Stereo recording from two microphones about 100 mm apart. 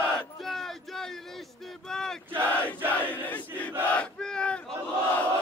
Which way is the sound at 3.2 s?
15° left (ahead or behind).